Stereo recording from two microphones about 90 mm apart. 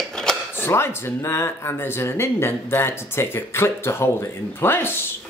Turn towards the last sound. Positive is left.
turn(degrees=25)  # may be behind; listen again after turning